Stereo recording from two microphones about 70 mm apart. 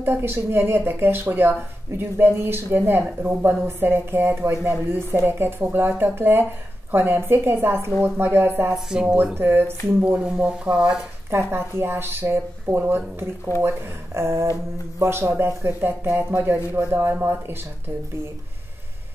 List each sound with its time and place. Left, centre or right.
0.0 s speech: right
9.0 s speech: right
11.2 s speech: right